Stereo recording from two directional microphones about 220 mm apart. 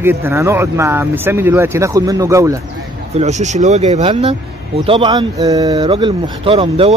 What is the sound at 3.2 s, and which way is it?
Speech, 30° right (ahead or behind).